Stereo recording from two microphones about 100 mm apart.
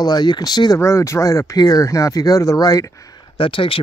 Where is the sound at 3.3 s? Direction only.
65° left (ahead or behind).